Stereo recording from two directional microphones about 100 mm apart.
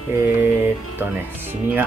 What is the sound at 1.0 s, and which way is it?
Speech, 20° right (ahead or behind).